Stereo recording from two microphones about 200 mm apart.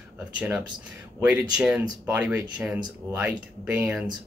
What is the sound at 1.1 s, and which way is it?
Speech, 5° right (ahead or behind).